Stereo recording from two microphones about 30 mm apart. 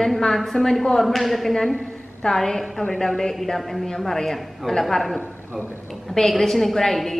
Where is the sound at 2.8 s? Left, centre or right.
Left.